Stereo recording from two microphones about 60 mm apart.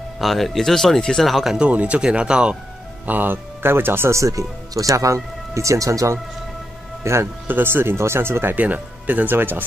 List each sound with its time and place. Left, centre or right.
0.2 s speech: centre
1.6 s speech: right
3.1 s speech: right
4.2 s speech: right
7.0 s speech: right
7.4 s speech: right
8.5 s speech: right